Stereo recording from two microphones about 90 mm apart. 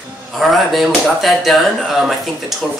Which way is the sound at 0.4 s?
Centre (ahead or behind).